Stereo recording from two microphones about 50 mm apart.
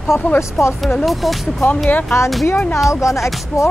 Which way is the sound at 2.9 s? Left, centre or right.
Left.